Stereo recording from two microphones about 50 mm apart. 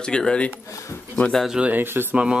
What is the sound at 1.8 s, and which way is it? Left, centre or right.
Speech, right.